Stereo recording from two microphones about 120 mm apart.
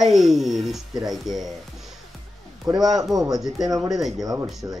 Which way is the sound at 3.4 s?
Centre (ahead or behind).